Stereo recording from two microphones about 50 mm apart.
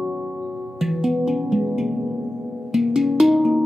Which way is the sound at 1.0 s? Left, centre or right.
Centre.